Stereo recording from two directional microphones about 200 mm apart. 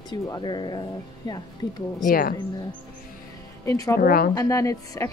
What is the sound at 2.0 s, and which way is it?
Speech, 45° left (ahead or behind).